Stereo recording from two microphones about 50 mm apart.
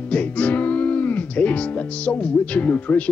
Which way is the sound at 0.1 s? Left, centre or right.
Left.